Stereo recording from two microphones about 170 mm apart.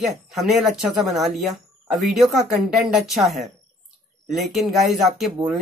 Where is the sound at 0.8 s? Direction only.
Centre (ahead or behind).